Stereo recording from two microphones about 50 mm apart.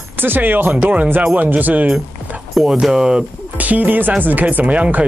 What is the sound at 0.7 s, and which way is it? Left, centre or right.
Speech, right.